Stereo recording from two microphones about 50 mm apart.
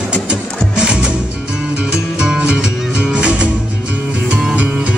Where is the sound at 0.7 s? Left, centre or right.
Centre.